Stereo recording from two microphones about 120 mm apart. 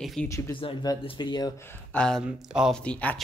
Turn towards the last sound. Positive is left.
turn(degrees=10)  # may be behind; listen again after turning